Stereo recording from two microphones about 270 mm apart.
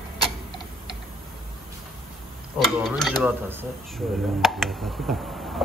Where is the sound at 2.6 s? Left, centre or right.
Centre.